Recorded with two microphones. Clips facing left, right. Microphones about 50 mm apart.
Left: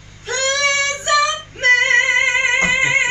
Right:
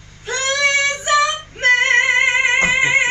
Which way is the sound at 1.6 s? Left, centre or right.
Centre.